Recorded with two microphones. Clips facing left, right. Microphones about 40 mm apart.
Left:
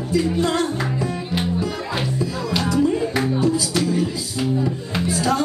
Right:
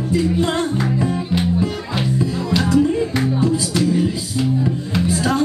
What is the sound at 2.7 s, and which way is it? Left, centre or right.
Music, right.